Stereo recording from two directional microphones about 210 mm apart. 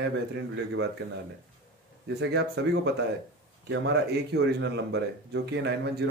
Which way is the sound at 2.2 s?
55° right (ahead or behind).